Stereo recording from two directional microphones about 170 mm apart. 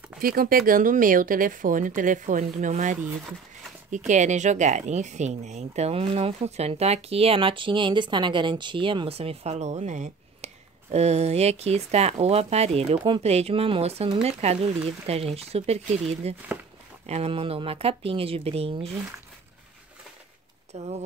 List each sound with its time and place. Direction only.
0.2 s speech: 60° right (ahead or behind); by 18.9 s 35° right (ahead or behind)
20.7 s speech: 40° right (ahead or behind)